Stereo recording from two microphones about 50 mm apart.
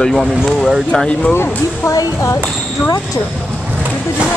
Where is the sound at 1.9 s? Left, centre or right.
Left.